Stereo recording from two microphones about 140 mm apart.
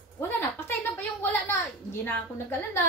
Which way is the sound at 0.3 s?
15° left (ahead or behind).